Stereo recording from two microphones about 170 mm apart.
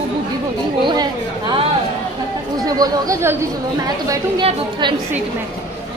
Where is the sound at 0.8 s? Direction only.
25° right (ahead or behind).